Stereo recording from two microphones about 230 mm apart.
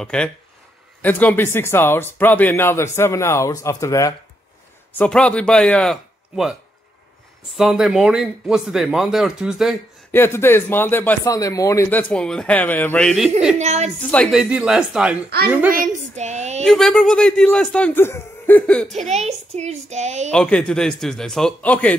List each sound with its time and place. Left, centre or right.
0.0 s speech: centre
7.5 s speech: centre
10.1 s speech: centre
13.6 s a woman's voice: right
14.0 s speech: centre
15.7 s a woman's voice: right
16.6 s speech: centre
18.9 s a woman's voice: right
20.2 s speech: centre